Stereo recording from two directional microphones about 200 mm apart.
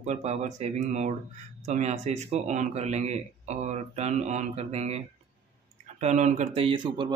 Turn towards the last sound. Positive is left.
turn(degrees=-25)  # may be behind; listen again after turning